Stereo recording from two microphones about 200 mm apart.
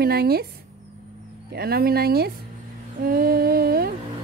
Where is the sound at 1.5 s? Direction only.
50° right (ahead or behind).